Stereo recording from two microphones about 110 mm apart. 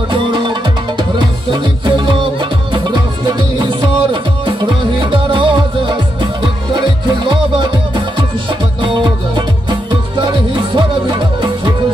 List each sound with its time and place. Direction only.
0.1 s music: 45° right (ahead or behind)
7.2 s music: 45° right (ahead or behind)
9.7 s music: 40° right (ahead or behind)